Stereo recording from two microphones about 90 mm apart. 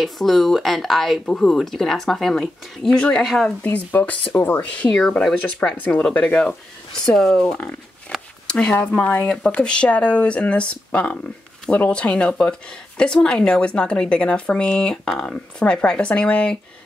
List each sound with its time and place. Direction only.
0.0 s speech: centre (ahead or behind)
3.6 s speech: 20° left (ahead or behind)
4.9 s speech: 5° left (ahead or behind)
8.1 s zipper: 10° left (ahead or behind)
8.5 s speech: 15° left (ahead or behind)